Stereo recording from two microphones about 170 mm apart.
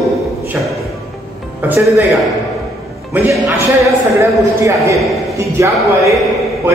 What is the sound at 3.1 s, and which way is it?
A woman's voice, 15° right (ahead or behind).